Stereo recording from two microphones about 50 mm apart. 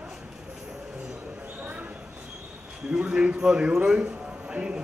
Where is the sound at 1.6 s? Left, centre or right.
Right.